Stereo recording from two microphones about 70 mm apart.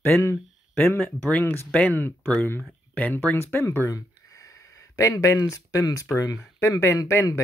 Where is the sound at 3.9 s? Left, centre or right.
Left.